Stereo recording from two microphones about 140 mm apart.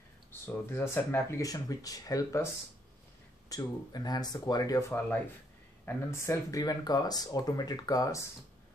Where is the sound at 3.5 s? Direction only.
25° left (ahead or behind).